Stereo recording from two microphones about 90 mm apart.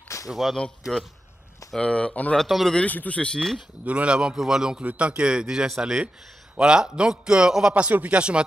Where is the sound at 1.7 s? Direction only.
10° left (ahead or behind).